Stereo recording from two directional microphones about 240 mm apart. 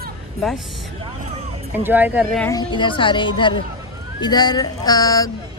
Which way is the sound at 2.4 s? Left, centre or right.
Centre.